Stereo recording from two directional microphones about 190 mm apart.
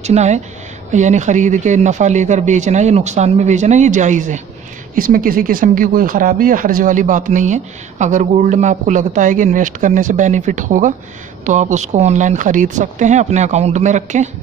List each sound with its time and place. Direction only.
0.0 s speech: 35° right (ahead or behind)